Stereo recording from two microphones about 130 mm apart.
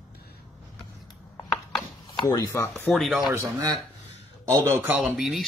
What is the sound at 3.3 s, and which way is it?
Speech, 25° right (ahead or behind).